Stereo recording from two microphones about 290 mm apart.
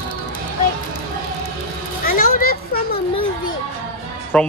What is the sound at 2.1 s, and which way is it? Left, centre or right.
Children playing, left.